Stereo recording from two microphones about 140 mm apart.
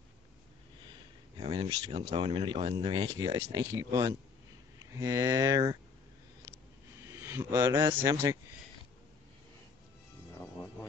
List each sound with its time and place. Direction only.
1.4 s speech: 35° right (ahead or behind)
7.2 s speech: 15° right (ahead or behind)
10.4 s music: 15° left (ahead or behind)